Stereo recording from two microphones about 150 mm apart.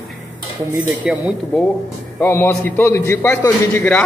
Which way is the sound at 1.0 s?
5° right (ahead or behind).